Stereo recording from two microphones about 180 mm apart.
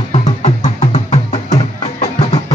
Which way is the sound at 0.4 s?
35° left (ahead or behind).